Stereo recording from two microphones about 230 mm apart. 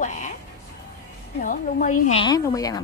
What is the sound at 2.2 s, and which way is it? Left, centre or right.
Speech, centre.